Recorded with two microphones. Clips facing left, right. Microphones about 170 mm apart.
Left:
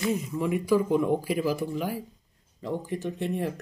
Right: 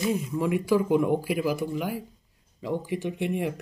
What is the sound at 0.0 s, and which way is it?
Speech, 10° right (ahead or behind).